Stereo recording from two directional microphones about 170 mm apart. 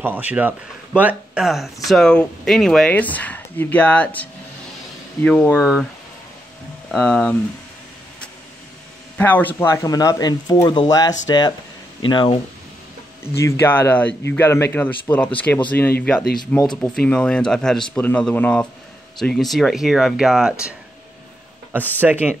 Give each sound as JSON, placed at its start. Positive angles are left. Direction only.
{"t": 0.0, "sound": "a man's voice", "side_deg": -10}
{"t": 5.6, "sound": "speech", "side_deg": -5}
{"t": 6.9, "sound": "speech", "side_deg": 5}
{"t": 9.2, "sound": "speech", "side_deg": 10}
{"t": 13.2, "sound": "a man's voice", "side_deg": 15}
{"t": 22.0, "sound": "ratchet", "side_deg": -10}